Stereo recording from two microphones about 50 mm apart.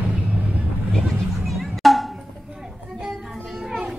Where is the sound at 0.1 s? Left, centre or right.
Right.